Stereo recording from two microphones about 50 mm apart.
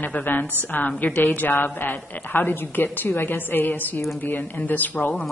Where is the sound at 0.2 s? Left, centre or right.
Left.